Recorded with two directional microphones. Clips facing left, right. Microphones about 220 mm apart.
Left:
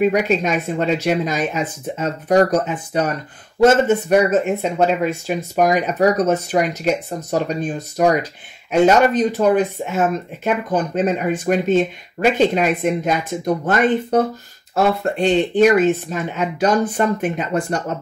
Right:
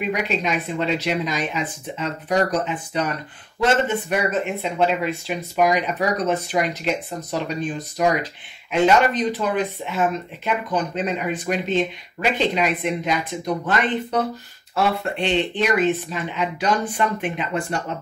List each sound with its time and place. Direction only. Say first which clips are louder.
0.0 s speech: left 7 dB; 45° left (ahead or behind)